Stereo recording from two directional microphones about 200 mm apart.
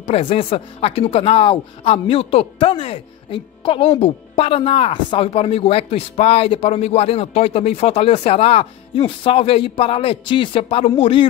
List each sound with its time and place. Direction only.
0.0 s speech: 30° left (ahead or behind)